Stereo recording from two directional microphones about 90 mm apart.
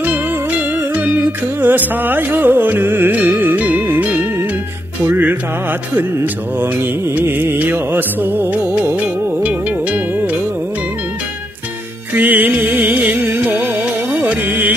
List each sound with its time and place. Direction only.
0.0 s music: 15° right (ahead or behind)
6.6 s music: 25° right (ahead or behind)
12.1 s music: 20° right (ahead or behind)